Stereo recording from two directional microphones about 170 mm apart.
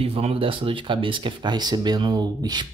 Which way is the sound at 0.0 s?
35° right (ahead or behind).